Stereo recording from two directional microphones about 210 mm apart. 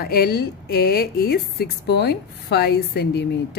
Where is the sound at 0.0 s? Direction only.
45° left (ahead or behind).